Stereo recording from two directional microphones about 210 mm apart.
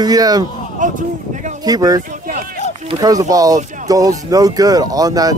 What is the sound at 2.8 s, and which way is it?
Speech, 15° right (ahead or behind).